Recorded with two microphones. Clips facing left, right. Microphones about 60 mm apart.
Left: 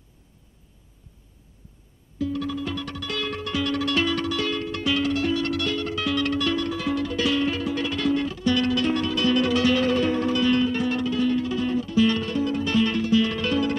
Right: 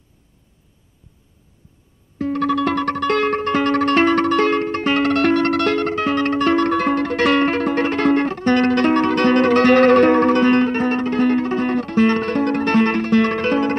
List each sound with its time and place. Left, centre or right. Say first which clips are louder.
2.1 s music: right 8 dB; right